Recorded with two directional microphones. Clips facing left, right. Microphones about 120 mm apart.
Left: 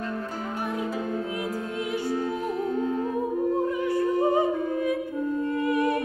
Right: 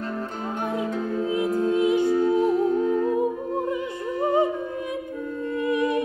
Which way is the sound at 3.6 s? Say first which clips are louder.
Left 3 dB; 20° right (ahead or behind).